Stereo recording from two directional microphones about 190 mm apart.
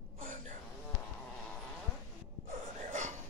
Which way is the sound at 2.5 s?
40° right (ahead or behind).